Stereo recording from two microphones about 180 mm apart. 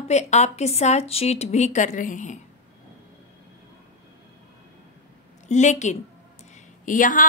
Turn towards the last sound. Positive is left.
turn(degrees=45)  # may be behind; listen again after turning